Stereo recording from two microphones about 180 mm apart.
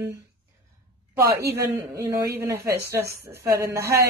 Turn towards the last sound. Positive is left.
turn(degrees=-15)  # may be behind; listen again after turning